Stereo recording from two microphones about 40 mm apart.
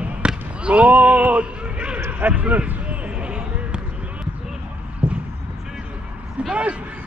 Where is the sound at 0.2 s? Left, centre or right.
Right.